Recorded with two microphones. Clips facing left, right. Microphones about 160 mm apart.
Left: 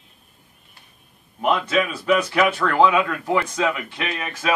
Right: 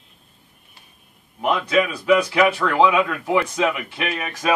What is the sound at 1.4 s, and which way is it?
Speech, 5° right (ahead or behind).